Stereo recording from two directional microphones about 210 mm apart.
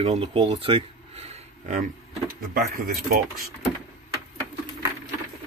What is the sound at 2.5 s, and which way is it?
Speech, 40° right (ahead or behind).